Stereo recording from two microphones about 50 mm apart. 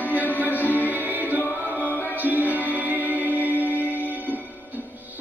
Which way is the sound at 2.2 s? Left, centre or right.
Right.